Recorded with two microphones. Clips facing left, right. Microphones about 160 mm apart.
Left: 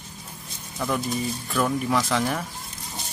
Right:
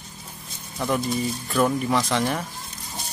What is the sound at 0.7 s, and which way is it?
Speech, 10° right (ahead or behind).